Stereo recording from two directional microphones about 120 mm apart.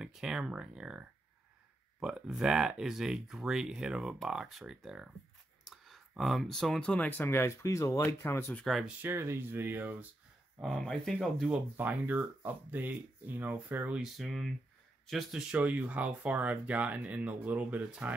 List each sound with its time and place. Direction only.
0.0 s speech: 5° right (ahead or behind); by 8.6 s 20° left (ahead or behind)
8.6 s speech: centre (ahead or behind)
9.0 s speech: 20° right (ahead or behind)
10.6 s speech: 5° left (ahead or behind)
11.7 s speech: 15° right (ahead or behind)
14.1 s speech: centre (ahead or behind)
15.5 s speech: 10° right (ahead or behind)